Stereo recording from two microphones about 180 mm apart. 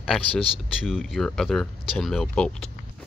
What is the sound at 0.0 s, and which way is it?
Speech, 5° left (ahead or behind).